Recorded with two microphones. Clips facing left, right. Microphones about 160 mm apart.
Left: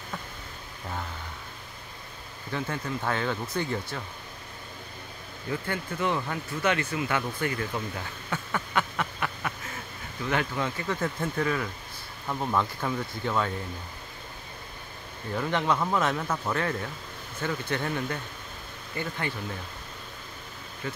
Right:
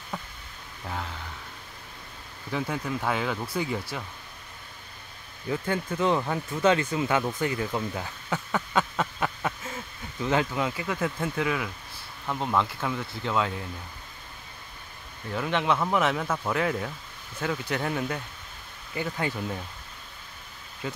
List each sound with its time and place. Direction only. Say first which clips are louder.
2.5 s speech: right 2 dB; 5° right (ahead or behind)
5.7 s speech: right 5 dB; 25° right (ahead or behind)
8.3 s a sound: right 3 dB; 10° right (ahead or behind)
8.7 s a sound: right 2 dB; 20° right (ahead or behind)
10.2 s speech: right 3 dB; 20° right (ahead or behind); by 13.5 s 5° right (ahead or behind)
15.3 s speech: right 1 dB; 5° right (ahead or behind)